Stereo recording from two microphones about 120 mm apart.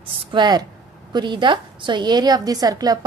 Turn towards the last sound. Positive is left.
turn(degrees=-35)  # may be behind; listen again after turning